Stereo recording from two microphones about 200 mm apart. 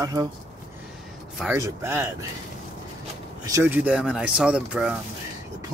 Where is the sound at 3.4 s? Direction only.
10° right (ahead or behind).